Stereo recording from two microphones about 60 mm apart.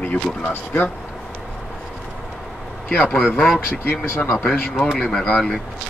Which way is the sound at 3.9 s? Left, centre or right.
Left.